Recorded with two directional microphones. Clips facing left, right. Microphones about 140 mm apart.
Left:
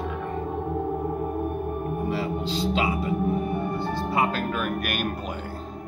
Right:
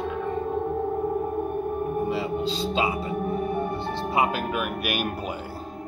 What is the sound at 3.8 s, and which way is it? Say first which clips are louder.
Speech: left 1 dB; 20° right (ahead or behind).